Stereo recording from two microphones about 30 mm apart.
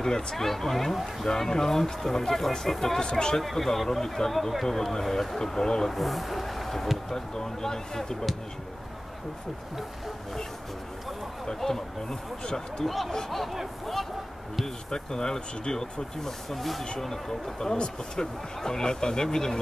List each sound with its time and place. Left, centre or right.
0.0 s speech: centre
3.0 s speech: left
3.5 s speech: centre
5.4 s speech: left
5.9 s speech: centre
11.4 s speech: centre
12.8 s speech: centre
14.9 s speech: left; by 16.8 s centre
17.1 s speech: centre